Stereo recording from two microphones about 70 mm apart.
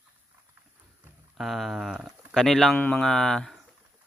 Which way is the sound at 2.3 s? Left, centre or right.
Centre.